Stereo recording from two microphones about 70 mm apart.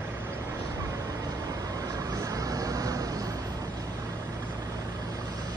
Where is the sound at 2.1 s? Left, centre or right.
Right.